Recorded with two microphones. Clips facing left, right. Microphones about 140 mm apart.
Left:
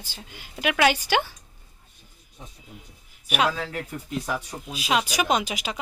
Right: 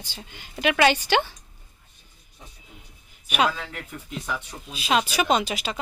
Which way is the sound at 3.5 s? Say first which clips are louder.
Left 5 dB; 40° left (ahead or behind).